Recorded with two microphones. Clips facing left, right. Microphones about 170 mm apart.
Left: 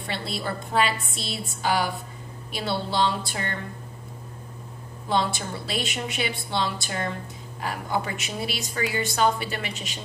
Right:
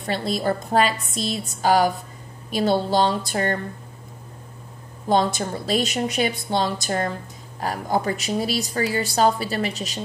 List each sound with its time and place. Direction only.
0.0 s speech: 40° right (ahead or behind)
5.0 s speech: 40° right (ahead or behind)